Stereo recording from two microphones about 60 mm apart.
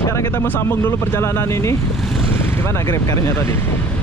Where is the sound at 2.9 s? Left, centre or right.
Left.